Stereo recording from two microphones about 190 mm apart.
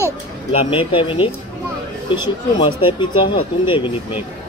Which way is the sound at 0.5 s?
30° left (ahead or behind).